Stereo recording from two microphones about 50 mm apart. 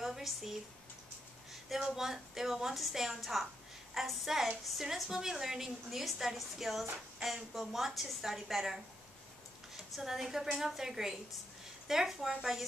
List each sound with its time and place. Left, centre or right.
0.0 s a sound: centre
1.7 s a woman's voice: centre
9.9 s a woman's voice: centre